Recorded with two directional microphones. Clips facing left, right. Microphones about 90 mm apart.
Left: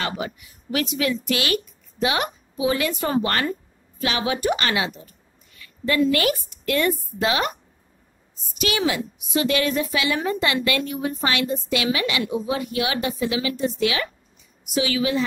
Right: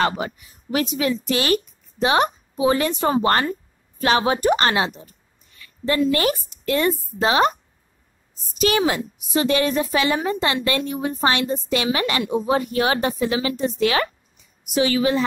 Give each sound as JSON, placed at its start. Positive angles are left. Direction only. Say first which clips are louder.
{"t": 0.0, "sound": "speech", "louder": "right 6 dB", "side_deg": -35}
{"t": 2.9, "sound": "a woman's voice", "louder": "right 4 dB", "side_deg": -25}
{"t": 6.7, "sound": "a woman's voice", "louder": "right 1 dB", "side_deg": -20}
{"t": 8.5, "sound": "a woman's voice", "louder": "right 4 dB", "side_deg": -40}